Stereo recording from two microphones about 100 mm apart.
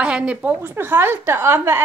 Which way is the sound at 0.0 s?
10° right (ahead or behind).